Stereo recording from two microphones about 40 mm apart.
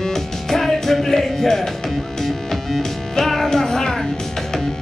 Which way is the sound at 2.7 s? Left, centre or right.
Centre.